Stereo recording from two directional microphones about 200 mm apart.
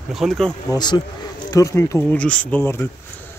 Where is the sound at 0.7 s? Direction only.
20° left (ahead or behind).